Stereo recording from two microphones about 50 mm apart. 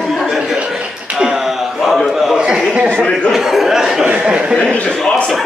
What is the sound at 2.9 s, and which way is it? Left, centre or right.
Chuckle, centre.